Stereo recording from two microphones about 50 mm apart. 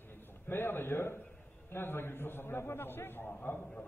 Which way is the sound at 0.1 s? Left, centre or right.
Left.